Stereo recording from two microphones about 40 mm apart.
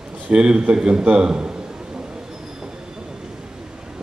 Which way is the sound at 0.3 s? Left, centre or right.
Right.